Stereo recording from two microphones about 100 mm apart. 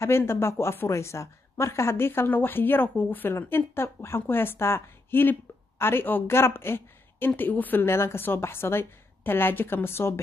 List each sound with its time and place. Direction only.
0.0 s a woman's voice: 25° left (ahead or behind)